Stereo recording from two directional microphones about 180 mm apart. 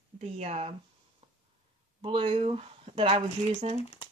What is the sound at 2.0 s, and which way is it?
Speech, 30° right (ahead or behind).